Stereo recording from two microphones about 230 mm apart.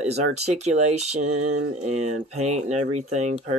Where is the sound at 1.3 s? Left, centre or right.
Right.